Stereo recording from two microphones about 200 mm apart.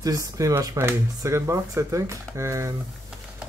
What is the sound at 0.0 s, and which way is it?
Speech, 15° right (ahead or behind).